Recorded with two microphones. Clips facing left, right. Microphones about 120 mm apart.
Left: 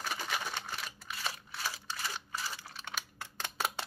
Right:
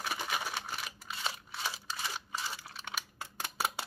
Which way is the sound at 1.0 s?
20° right (ahead or behind).